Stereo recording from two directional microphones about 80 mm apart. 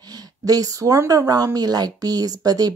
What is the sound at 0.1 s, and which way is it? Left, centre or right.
Speech, right.